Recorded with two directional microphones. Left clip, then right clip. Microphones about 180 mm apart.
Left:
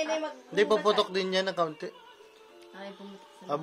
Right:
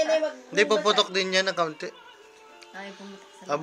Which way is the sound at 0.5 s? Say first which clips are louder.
Right 3 dB; 20° left (ahead or behind).